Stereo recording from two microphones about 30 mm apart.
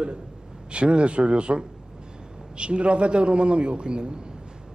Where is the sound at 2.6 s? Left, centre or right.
Right.